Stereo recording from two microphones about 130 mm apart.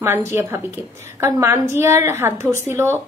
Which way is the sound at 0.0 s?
20° right (ahead or behind).